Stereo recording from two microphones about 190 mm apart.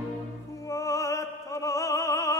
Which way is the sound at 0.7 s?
15° left (ahead or behind).